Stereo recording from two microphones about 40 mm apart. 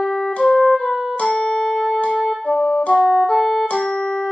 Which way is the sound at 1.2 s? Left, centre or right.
Centre.